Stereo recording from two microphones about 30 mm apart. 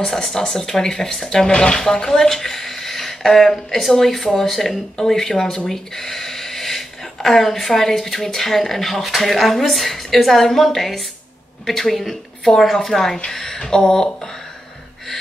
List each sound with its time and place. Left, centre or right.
0.0 s speech: centre
5.7 s a sound: centre
8.3 s a woman's voice: centre